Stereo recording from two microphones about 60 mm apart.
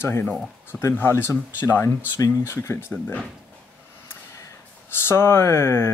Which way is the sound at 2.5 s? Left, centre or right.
Left.